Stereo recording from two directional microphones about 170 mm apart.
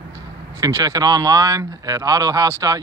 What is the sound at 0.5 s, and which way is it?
Speech, 20° right (ahead or behind).